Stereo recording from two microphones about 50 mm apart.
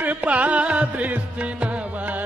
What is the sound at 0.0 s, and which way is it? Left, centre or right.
Music, right.